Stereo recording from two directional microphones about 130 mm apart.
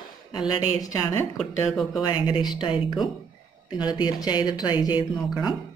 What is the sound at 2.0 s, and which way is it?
Speech, 35° left (ahead or behind).